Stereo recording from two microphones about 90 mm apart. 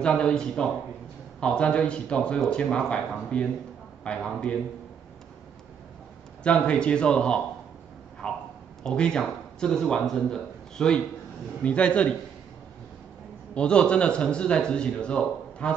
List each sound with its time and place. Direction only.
0.0 s a man's voice: 10° left (ahead or behind)
6.4 s a man's voice: 10° left (ahead or behind)
13.6 s a man's voice: 10° left (ahead or behind)